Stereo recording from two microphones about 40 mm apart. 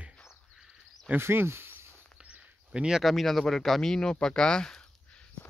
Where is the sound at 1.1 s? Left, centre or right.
Right.